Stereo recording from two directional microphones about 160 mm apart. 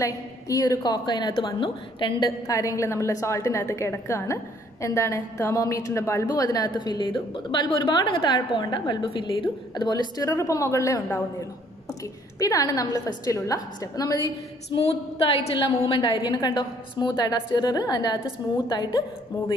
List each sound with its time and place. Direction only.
0.0 s a woman's voice: 20° left (ahead or behind)
12.4 s a woman's voice: 20° left (ahead or behind)
14.8 s a woman's voice: 35° left (ahead or behind)